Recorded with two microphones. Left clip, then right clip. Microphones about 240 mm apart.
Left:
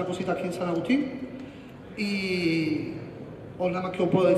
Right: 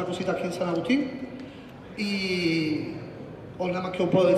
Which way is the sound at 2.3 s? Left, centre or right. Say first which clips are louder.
Even; left.